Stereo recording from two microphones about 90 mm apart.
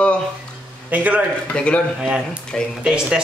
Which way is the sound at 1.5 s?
15° left (ahead or behind).